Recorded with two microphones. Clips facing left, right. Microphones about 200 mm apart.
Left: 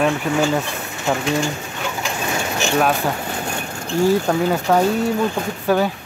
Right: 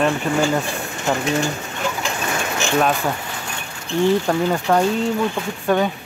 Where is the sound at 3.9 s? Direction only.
40° left (ahead or behind).